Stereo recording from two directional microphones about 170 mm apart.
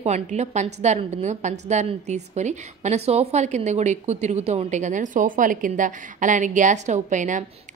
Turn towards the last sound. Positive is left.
turn(degrees=-45)  # may be behind; listen again after turning